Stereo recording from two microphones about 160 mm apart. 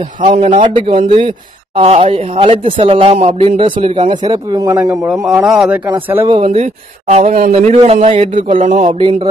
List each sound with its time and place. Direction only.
0.4 s speech: 50° right (ahead or behind)
0.7 s speech: 35° right (ahead or behind)
3.9 s speech: 45° right (ahead or behind)
4.2 s speech: 25° right (ahead or behind)
5.2 s speech: centre (ahead or behind)
6.2 s speech: 35° right (ahead or behind)
8.5 s speech: 45° right (ahead or behind)
8.9 s speech: 30° right (ahead or behind)